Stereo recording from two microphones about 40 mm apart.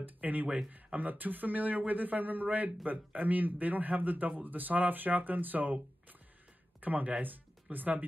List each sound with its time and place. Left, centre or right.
0.0 s speech: right
6.8 s speech: right